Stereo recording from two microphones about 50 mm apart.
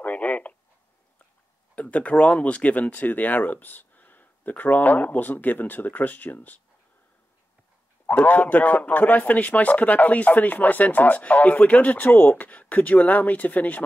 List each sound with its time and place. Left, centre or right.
0.0 s radio: left
1.8 s speech: left
8.1 s speech: left